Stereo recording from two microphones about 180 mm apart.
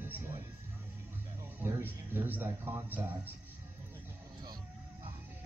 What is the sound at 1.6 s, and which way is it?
Music, 10° right (ahead or behind).